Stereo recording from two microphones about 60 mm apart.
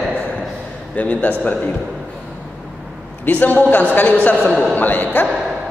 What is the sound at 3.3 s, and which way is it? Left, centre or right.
A man's voice, left.